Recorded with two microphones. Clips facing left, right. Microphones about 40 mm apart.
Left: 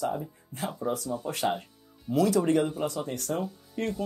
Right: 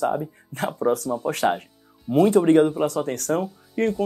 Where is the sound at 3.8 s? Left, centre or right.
Right.